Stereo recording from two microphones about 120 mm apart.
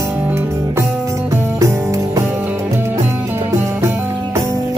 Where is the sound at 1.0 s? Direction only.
25° right (ahead or behind).